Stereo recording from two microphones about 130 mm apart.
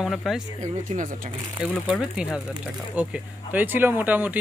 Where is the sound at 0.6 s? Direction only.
80° right.